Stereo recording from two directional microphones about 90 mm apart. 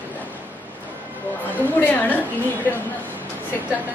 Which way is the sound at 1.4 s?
20° left (ahead or behind).